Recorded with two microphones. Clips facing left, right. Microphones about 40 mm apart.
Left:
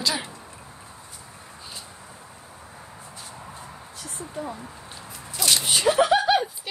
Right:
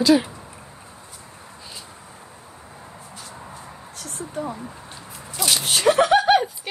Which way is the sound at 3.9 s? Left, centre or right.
Right.